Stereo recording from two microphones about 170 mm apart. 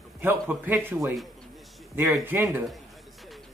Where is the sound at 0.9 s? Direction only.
Centre (ahead or behind).